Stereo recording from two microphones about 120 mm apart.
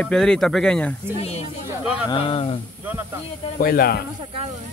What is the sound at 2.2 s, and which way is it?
Speech, 50° left (ahead or behind).